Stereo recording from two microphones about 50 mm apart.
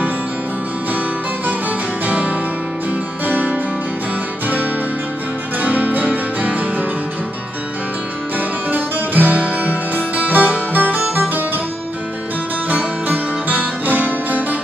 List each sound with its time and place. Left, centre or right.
2.0 s music: right
5.6 s music: right
8.4 s music: right
12.6 s music: right